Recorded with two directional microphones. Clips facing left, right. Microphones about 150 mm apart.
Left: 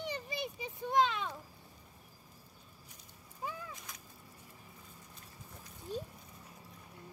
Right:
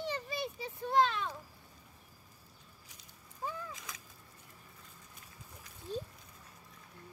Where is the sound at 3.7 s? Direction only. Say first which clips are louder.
Right 2 dB; 90° right.